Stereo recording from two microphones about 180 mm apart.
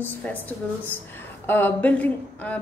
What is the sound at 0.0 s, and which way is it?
Speech, 10° left (ahead or behind).